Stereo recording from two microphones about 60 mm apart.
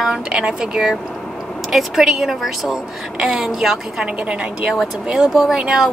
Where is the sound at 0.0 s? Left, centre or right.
Centre.